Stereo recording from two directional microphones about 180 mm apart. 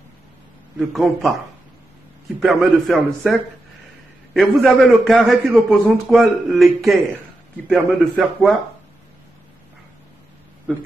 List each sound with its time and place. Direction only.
0.7 s a man's voice: centre (ahead or behind)
2.4 s a man's voice: centre (ahead or behind)